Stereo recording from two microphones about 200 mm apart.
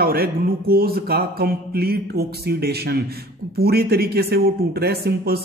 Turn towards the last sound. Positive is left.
turn(degrees=-50)  # may be behind; listen again after turning